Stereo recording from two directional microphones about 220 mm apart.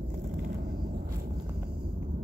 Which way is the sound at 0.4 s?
40° right (ahead or behind).